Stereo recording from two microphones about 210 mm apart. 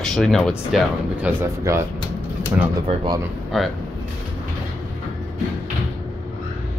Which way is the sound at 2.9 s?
20° right (ahead or behind).